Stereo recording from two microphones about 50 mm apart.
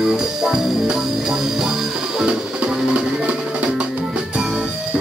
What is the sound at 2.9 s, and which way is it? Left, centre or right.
Music, right.